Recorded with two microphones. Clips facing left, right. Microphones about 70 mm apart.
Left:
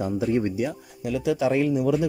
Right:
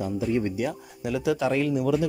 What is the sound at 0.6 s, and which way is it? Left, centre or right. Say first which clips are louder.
Speech: left 1 dB; centre.